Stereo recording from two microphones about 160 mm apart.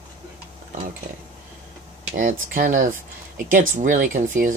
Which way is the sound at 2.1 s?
55° right (ahead or behind).